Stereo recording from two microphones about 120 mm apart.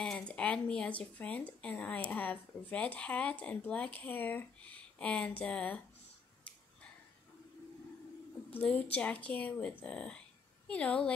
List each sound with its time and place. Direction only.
0.0 s speech: 10° left (ahead or behind)
8.5 s speech: 10° left (ahead or behind)